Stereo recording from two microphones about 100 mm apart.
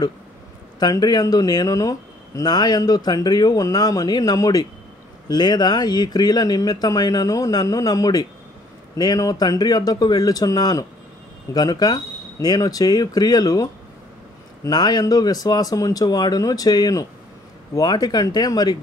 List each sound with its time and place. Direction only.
0.7 s speech: 40° left (ahead or behind)
14.7 s speech: 45° left (ahead or behind)